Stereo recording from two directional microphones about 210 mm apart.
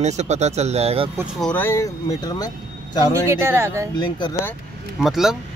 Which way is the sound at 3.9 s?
20° left (ahead or behind).